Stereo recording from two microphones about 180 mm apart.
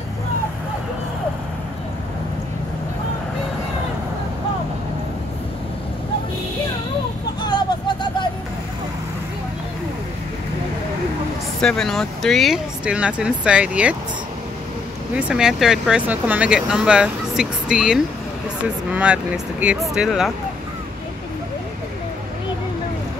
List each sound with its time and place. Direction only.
7.4 s a sound: 25° left (ahead or behind)
11.6 s speech: 5° left (ahead or behind)
15.1 s speech: 5° right (ahead or behind)